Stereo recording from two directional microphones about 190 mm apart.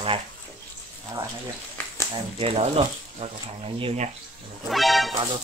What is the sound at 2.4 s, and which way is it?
Speech, 30° right (ahead or behind).